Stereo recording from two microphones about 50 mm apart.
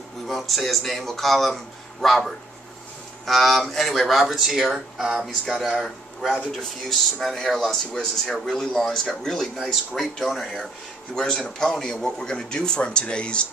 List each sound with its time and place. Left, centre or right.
0.3 s speech: centre
6.5 s a man's voice: centre; by 13.5 s left